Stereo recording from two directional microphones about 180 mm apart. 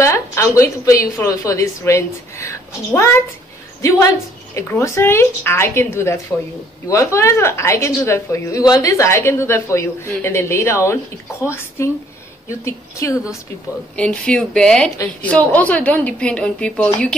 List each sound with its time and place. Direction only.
0.0 s a woman's voice: 15° left (ahead or behind)
4.6 s a woman's voice: 15° left (ahead or behind)
13.9 s a woman's voice: 5° left (ahead or behind)